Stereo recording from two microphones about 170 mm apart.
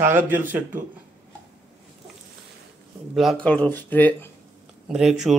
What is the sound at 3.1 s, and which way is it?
Speech, centre (ahead or behind).